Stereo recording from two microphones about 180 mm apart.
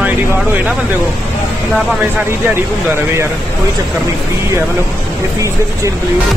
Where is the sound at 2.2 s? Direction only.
15° right (ahead or behind).